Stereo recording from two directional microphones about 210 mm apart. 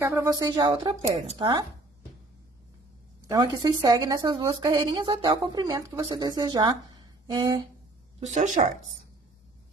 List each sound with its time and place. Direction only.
0.0 s speech: 15° right (ahead or behind)
3.3 s a woman's voice: 20° right (ahead or behind)
8.3 s speech: 35° right (ahead or behind)